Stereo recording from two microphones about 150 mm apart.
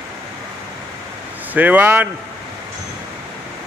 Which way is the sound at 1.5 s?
10° right (ahead or behind).